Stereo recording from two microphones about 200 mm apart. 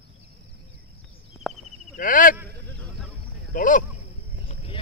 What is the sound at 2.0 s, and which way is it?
Speech, 45° left (ahead or behind).